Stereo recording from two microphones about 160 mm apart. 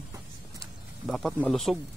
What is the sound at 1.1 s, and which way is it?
Speech, centre (ahead or behind).